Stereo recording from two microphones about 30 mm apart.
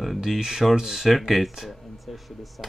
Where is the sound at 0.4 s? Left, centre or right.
Centre.